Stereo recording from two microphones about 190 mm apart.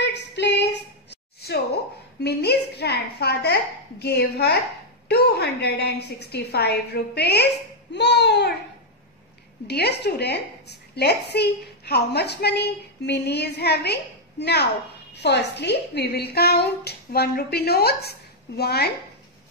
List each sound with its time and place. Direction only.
0.0 s a sound: 65° left (ahead or behind)
1.4 s a woman's voice: 60° left (ahead or behind)
9.7 s a woman's voice: 60° left (ahead or behind)